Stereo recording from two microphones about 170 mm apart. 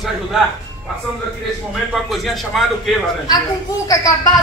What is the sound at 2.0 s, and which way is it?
Speech, centre (ahead or behind).